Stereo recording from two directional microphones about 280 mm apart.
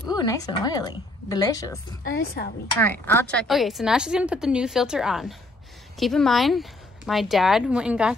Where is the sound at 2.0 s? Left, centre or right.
Left.